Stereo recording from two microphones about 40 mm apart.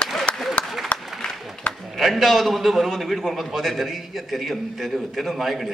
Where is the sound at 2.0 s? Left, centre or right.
Centre.